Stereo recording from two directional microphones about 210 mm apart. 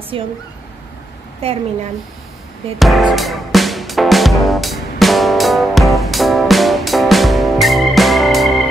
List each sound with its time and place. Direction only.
0.1 s speech: 25° right (ahead or behind)
1.4 s speech: 25° right (ahead or behind)
2.8 s music: centre (ahead or behind)